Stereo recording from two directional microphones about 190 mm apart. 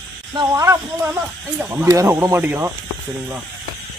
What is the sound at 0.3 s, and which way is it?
Speech, 20° right (ahead or behind).